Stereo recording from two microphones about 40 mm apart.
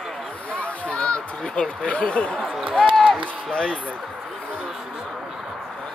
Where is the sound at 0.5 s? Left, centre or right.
Left.